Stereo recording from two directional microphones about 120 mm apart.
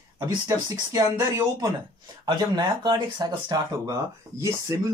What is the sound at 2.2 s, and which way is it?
Speech, 40° right (ahead or behind).